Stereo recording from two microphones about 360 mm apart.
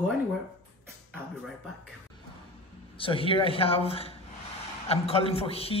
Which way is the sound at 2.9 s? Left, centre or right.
Centre.